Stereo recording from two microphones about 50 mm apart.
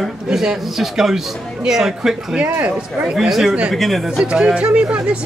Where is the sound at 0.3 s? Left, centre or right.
Centre.